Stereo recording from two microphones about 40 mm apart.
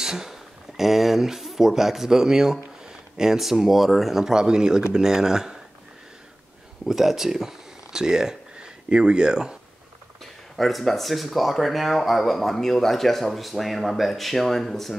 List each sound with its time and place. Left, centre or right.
0.0 s speech: centre
6.9 s speech: centre
10.5 s speech: centre